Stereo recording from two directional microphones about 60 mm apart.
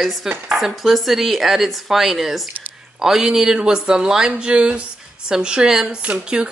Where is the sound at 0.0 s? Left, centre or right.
Centre.